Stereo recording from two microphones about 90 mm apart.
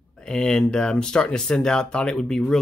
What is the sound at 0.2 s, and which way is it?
Speech, 5° left (ahead or behind).